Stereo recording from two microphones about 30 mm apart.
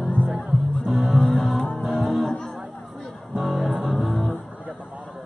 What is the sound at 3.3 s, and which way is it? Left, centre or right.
Music, centre.